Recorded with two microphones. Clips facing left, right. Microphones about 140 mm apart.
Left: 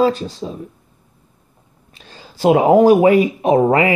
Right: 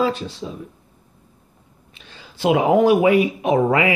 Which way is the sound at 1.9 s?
40° left (ahead or behind).